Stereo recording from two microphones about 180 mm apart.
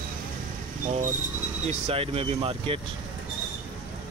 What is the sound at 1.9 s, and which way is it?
Speech, 30° right (ahead or behind).